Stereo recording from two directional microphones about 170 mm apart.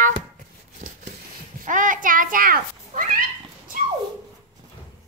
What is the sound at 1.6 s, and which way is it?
Cat, 50° right (ahead or behind).